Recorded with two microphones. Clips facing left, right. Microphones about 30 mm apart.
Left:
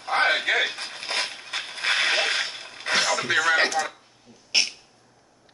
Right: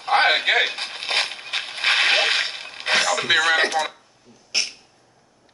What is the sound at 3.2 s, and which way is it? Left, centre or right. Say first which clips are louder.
Speech: right 3 dB; right.